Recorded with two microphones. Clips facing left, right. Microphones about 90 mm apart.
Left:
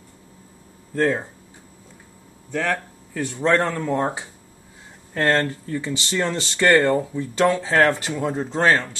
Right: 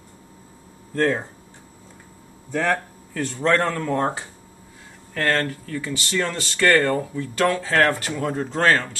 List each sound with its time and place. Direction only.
0.9 s speech: 5° left (ahead or behind)
2.5 s speech: 5° right (ahead or behind)
3.1 s speech: 10° left (ahead or behind)